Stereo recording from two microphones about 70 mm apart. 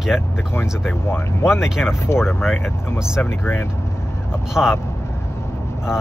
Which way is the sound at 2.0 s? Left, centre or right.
Left.